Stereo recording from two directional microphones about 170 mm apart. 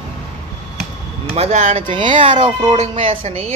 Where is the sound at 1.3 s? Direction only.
40° right (ahead or behind).